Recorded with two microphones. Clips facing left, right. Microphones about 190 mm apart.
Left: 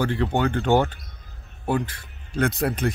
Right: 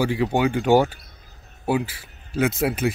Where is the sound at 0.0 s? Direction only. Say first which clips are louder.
Right 2 dB; 10° right (ahead or behind).